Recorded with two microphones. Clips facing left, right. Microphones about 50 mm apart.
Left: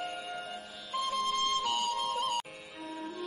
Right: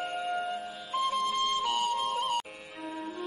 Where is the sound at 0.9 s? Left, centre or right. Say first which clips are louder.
Right 3 dB; centre.